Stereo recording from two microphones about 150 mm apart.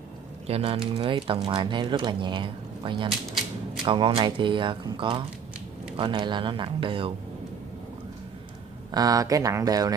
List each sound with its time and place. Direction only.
0.5 s speech: 40° right (ahead or behind)
3.1 s typewriter: centre (ahead or behind)
3.8 s speech: 35° right (ahead or behind)
8.9 s speech: 25° right (ahead or behind)